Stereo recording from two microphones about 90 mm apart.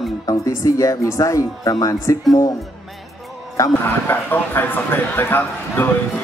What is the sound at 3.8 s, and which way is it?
Speech, 25° left (ahead or behind).